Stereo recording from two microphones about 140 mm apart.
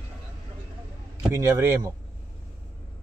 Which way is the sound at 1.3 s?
20° right (ahead or behind).